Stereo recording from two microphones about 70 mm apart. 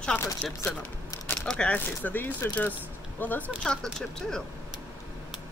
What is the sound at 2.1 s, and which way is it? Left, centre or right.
Speech, left.